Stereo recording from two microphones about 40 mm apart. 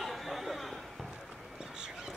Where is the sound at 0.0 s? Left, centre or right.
Centre.